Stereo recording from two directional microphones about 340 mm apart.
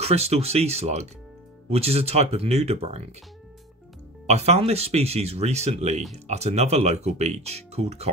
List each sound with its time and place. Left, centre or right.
0.0 s speech: centre
4.3 s speech: centre